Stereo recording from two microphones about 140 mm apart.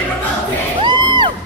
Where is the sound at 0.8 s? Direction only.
30° right (ahead or behind).